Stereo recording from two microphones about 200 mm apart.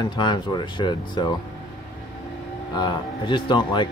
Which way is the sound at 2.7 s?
25° left (ahead or behind).